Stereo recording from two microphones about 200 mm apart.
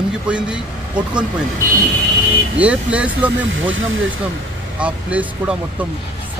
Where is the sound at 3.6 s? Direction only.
80° right.